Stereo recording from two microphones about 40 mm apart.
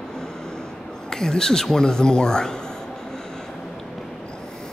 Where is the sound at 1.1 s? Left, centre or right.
Centre.